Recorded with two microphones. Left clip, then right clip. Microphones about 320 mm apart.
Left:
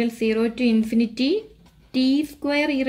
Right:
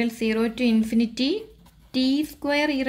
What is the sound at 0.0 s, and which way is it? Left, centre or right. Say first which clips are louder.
Speech: left 2 dB; centre.